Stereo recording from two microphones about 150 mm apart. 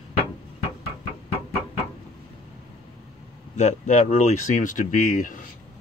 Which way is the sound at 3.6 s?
50° left (ahead or behind).